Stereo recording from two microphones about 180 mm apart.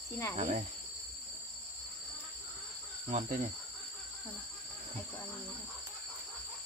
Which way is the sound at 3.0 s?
45° right (ahead or behind).